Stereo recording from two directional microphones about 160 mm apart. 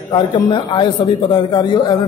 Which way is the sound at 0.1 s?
30° left (ahead or behind).